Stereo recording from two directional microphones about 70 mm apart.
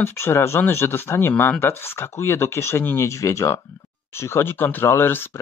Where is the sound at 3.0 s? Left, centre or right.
Left.